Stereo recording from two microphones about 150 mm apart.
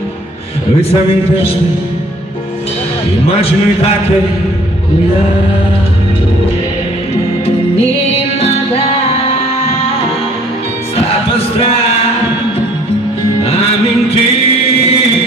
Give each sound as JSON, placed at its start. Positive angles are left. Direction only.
{"t": 3.3, "sound": "a man's voice", "side_deg": 40}